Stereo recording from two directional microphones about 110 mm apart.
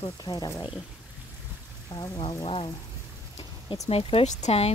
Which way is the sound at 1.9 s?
35° left (ahead or behind).